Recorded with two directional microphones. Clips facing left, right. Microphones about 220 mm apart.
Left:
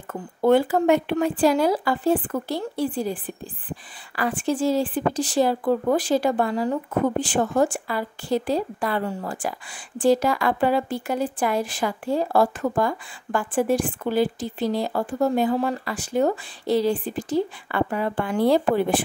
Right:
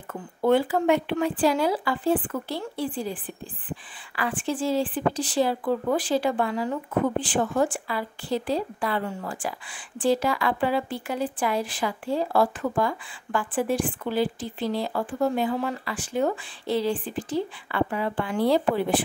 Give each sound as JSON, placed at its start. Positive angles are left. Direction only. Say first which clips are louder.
{"t": 0.1, "sound": "speech", "louder": "left 3 dB", "side_deg": 45}